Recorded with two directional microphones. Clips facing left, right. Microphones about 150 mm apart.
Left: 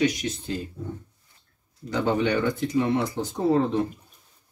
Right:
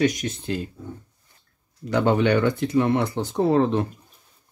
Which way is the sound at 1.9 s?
65° right (ahead or behind).